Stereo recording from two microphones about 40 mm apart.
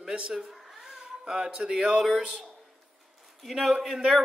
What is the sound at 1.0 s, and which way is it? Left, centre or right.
Speech, centre.